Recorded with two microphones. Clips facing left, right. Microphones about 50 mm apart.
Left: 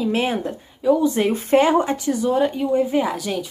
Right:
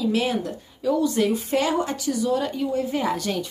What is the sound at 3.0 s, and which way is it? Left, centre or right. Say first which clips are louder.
Speech: left 1 dB; centre.